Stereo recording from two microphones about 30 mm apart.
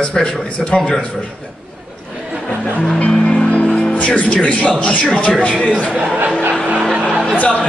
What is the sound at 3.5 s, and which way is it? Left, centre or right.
Music, left.